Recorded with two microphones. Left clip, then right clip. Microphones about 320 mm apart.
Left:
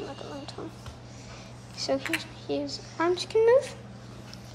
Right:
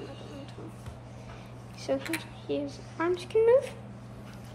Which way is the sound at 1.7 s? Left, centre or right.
Centre.